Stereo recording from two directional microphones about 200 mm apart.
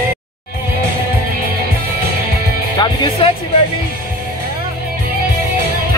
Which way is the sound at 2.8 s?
25° left (ahead or behind).